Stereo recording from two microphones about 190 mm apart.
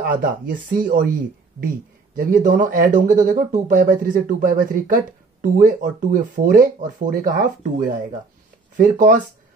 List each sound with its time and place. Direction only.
0.0 s speech: 45° right (ahead or behind)
2.1 s speech: 45° right (ahead or behind)